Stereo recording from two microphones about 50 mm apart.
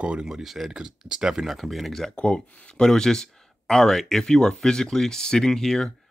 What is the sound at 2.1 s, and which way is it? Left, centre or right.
Speech, left.